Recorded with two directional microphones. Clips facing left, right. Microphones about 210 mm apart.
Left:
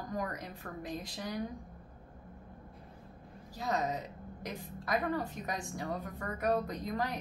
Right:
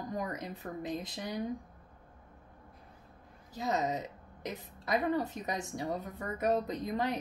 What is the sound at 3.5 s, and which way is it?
A woman's voice, 20° right (ahead or behind).